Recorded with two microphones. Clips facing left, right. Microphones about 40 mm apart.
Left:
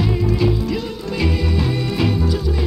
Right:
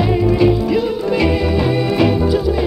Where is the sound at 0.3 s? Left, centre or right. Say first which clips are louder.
Right 6 dB; centre.